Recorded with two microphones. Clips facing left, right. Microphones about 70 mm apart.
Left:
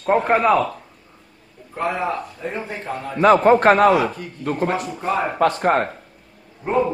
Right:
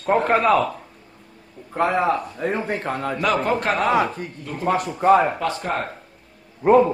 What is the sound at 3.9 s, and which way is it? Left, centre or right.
Speech, right.